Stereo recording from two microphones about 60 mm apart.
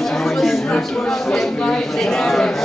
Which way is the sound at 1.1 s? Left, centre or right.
Centre.